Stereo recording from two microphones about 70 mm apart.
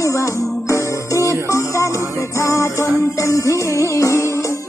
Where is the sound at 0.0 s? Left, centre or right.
Left.